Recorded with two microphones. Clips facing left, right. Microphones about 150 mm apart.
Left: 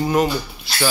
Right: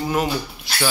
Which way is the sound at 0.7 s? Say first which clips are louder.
Even; 15° right (ahead or behind).